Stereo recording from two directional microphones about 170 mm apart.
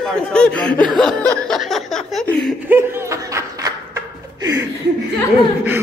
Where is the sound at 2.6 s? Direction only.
15° right (ahead or behind).